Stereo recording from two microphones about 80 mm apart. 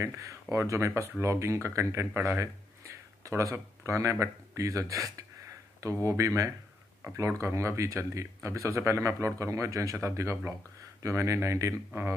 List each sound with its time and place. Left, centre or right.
0.0 s speech: right